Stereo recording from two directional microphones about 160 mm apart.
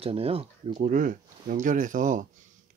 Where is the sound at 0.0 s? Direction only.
35° right (ahead or behind).